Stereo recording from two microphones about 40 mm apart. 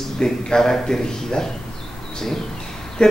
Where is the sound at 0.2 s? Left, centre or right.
Centre.